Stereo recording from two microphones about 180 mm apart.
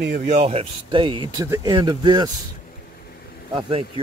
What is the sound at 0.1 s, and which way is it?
Speech, 40° right (ahead or behind).